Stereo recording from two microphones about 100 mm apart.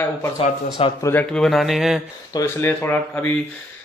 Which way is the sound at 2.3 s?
25° left (ahead or behind).